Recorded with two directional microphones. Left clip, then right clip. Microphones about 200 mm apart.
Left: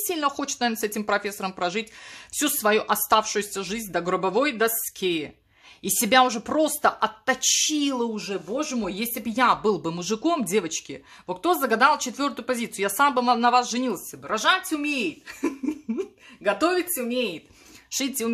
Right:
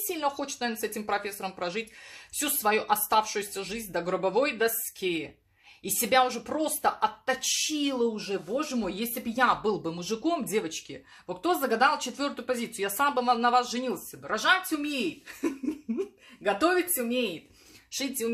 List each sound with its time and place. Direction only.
0.1 s speech: 45° left (ahead or behind); by 17.3 s 25° left (ahead or behind)
17.9 s speech: 40° left (ahead or behind)